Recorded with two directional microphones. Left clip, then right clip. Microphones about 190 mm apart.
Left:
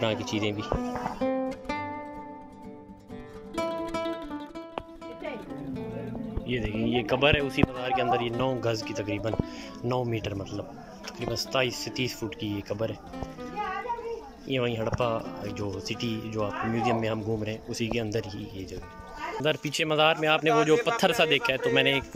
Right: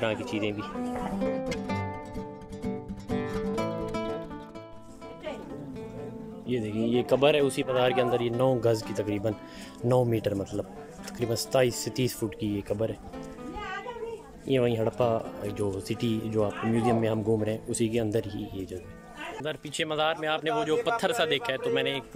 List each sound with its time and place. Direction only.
0.0 s speech: 5° right (ahead or behind)
2.6 s music: centre (ahead or behind)
6.4 s speech: 20° right (ahead or behind)
14.5 s speech: 25° right (ahead or behind)
19.4 s speech: centre (ahead or behind)